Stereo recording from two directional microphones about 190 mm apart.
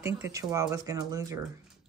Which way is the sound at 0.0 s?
15° right (ahead or behind).